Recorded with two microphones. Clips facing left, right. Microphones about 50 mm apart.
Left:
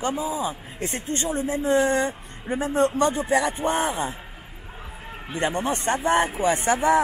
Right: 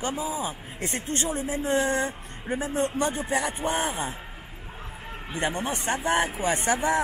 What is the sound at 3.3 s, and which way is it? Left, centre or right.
Speech, left.